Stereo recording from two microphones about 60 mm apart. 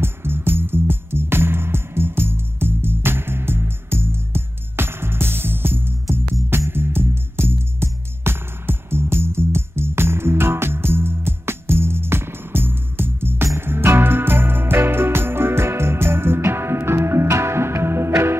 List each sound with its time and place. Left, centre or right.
0.0 s music: right